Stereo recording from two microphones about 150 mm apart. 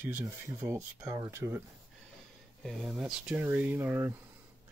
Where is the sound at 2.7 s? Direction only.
Centre (ahead or behind).